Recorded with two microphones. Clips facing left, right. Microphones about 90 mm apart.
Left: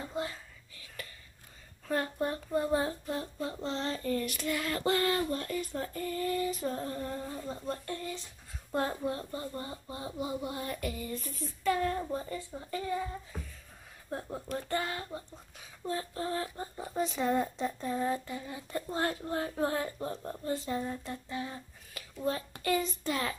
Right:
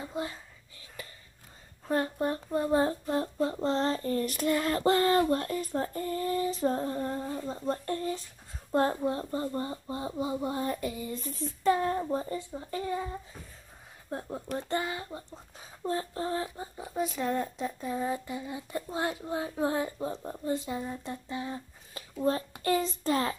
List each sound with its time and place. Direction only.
0.0 s whispering: 20° right (ahead or behind)
1.0 s a sound: 20° right (ahead or behind)
1.9 s speech: 25° right (ahead or behind)
2.8 s child singing: 40° right (ahead or behind)
6.8 s a sound: 30° right (ahead or behind)
7.4 s child singing: 30° right (ahead or behind)
8.7 s speech: 35° right (ahead or behind)
14.8 s speech: 10° right (ahead or behind)
15.1 s speech: 25° right (ahead or behind)
16.5 s a sound: 5° right (ahead or behind)
18.2 s speech: 15° right (ahead or behind)
22.6 s child singing: 35° right (ahead or behind)